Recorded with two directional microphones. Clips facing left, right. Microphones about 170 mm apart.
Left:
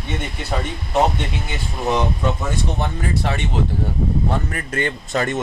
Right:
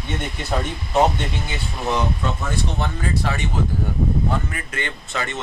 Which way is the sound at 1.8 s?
15° left (ahead or behind).